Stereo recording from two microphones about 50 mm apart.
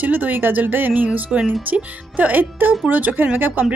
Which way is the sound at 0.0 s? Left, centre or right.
Right.